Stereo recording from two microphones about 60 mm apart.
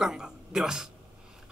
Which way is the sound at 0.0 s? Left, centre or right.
Centre.